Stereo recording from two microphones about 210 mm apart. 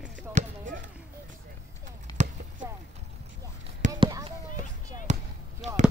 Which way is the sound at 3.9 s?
15° right (ahead or behind).